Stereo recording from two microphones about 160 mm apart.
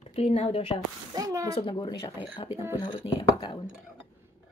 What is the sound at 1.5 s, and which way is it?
A woman's voice, 35° left (ahead or behind).